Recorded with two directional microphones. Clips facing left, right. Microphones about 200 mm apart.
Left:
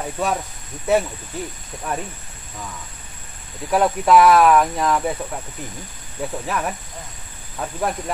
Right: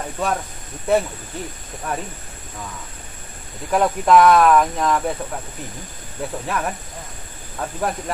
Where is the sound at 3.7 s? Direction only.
5° left (ahead or behind).